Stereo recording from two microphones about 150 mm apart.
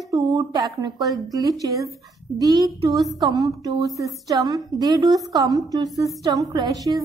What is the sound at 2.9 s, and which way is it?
Speech, centre (ahead or behind).